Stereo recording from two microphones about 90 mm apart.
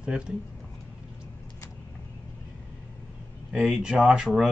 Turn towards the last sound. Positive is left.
turn(degrees=-5)  # may be behind; listen again after turning